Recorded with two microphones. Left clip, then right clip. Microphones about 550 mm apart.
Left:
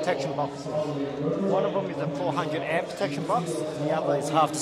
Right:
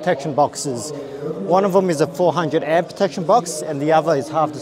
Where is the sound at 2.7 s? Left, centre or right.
Right.